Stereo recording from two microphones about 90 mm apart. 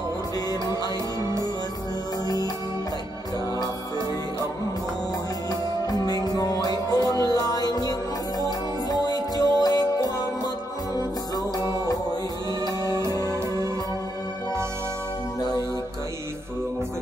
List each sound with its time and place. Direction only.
2.2 s music: 45° left (ahead or behind)
6.0 s music: 45° left (ahead or behind)
9.0 s music: 45° left (ahead or behind)
11.5 s music: 45° left (ahead or behind)
13.2 s music: 30° right (ahead or behind)